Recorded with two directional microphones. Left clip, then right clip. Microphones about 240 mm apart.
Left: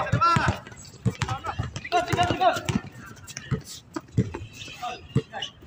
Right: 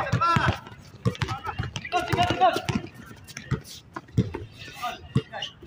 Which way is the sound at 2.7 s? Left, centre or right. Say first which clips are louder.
Even; centre.